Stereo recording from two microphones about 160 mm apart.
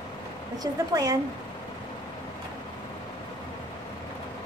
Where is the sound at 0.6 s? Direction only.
20° right (ahead or behind).